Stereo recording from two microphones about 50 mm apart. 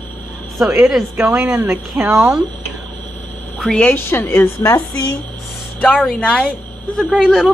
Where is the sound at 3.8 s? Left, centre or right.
Left.